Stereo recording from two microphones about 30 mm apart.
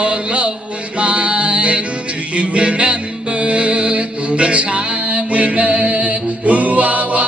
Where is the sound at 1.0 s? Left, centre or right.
Right.